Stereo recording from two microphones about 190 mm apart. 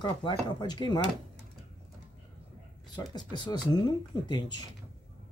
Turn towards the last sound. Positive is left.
turn(degrees=20)  # may be behind; listen again after turning